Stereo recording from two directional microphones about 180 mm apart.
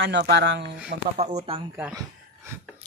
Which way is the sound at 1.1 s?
35° right (ahead or behind).